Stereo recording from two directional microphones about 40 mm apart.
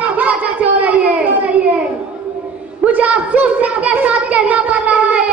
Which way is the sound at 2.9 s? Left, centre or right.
Right.